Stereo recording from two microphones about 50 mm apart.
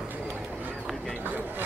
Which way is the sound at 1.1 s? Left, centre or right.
Right.